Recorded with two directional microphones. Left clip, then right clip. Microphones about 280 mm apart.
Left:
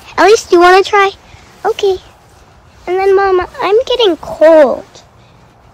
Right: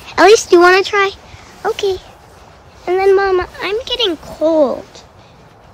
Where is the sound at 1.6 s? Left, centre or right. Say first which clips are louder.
Left 4 dB; centre.